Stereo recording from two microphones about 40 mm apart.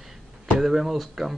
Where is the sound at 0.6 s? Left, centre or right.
Centre.